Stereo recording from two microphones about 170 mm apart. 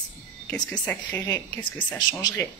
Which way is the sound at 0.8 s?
10° left (ahead or behind).